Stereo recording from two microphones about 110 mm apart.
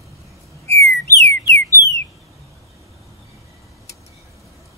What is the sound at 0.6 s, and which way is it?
Whistle, 25° left (ahead or behind).